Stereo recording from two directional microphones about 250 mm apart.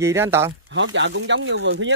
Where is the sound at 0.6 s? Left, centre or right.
Right.